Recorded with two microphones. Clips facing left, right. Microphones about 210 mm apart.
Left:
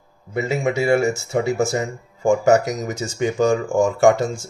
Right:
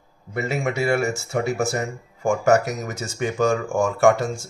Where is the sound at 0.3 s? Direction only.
20° left (ahead or behind).